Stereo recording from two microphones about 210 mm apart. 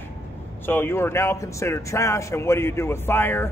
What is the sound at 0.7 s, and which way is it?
A man's voice, 10° left (ahead or behind).